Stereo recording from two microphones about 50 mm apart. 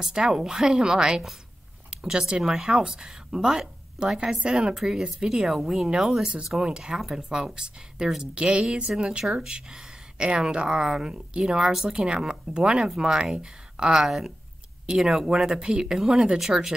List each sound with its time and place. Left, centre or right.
0.0 s speech: centre
5.5 s speech: centre
14.0 s speech: centre